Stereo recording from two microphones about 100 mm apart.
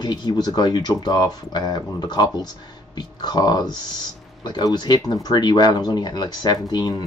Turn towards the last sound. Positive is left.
turn(degrees=45)  # may be behind; listen again after turning